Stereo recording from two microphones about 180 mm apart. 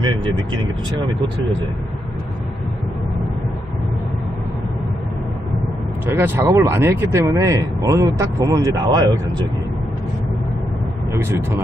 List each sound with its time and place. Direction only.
0.0 s speech: 25° right (ahead or behind)
6.1 s speech: 10° right (ahead or behind)